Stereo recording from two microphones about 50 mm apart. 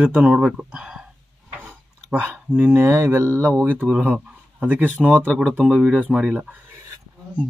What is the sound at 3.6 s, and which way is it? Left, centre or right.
Speech, right.